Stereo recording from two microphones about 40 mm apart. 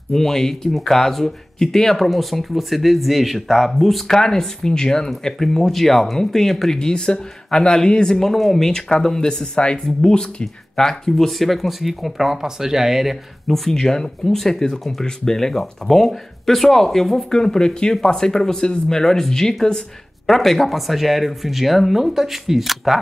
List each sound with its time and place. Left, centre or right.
0.1 s speech: centre
4.1 s speech: centre
10.8 s speech: centre
13.7 s speech: centre
15.0 s speech: centre
17.3 s speech: centre